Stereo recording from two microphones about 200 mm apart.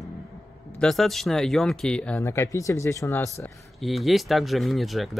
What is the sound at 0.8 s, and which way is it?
Speech, centre (ahead or behind).